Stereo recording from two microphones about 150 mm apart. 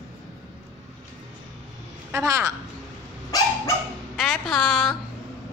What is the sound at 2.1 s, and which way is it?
Speech, 20° right (ahead or behind).